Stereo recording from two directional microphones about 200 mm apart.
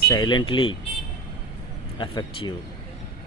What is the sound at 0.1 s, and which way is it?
Speech, 20° left (ahead or behind).